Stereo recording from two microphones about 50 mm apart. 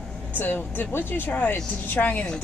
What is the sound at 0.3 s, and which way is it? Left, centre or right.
Speech, left.